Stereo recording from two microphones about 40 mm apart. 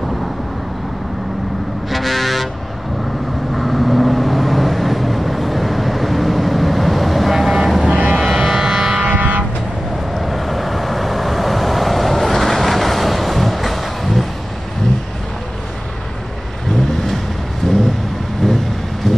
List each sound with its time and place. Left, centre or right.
1.9 s vehicle: centre
3.5 s vehicle: centre
7.9 s vehicle: right
8.2 s music: centre
8.5 s a sound: centre
9.0 s vehicle: right
10.1 s vehicle: centre
17.6 s a sound: centre
18.4 s vehicle: centre